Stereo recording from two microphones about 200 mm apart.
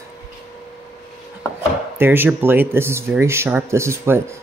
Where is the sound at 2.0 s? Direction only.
10° right (ahead or behind).